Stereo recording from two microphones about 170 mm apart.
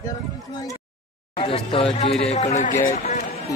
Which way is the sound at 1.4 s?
30° left (ahead or behind).